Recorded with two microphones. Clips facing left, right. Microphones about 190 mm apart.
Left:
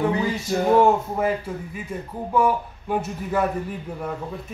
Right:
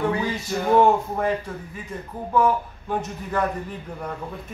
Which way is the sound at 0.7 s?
5° left (ahead or behind).